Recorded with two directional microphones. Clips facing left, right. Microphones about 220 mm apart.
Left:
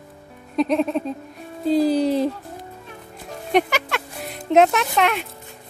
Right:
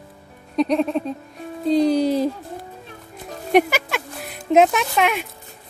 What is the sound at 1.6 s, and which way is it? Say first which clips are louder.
Speech: right 1 dB; 5° left (ahead or behind).